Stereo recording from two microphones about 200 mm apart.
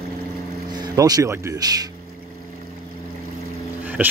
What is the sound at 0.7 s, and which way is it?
Speech, 20° right (ahead or behind).